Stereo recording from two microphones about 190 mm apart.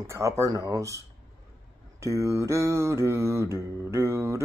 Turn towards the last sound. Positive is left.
turn(degrees=-15)  # may be behind; listen again after turning